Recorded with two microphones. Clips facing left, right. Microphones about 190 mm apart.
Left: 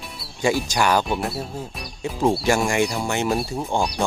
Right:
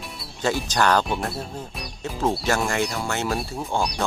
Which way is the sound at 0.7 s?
10° left (ahead or behind).